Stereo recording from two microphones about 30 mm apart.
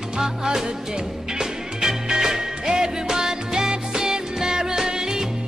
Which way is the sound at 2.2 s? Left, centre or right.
Right.